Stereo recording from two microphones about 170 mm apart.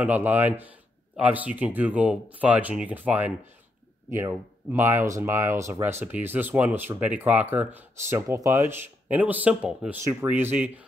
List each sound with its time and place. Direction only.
0.0 s speech: 10° right (ahead or behind)